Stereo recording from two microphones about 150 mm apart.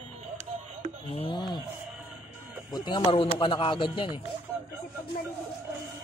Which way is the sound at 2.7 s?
30° left (ahead or behind).